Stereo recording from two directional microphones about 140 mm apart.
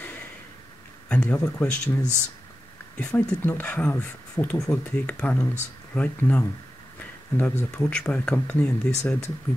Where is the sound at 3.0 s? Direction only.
10° left (ahead or behind).